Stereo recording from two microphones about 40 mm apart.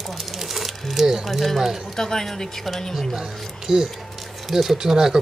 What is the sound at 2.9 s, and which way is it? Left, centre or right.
Speech, centre.